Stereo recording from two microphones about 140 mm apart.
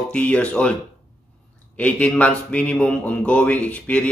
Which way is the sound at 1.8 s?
10° left (ahead or behind).